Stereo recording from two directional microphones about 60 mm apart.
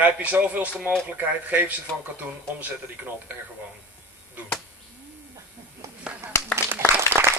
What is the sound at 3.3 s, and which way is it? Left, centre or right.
Speech, right.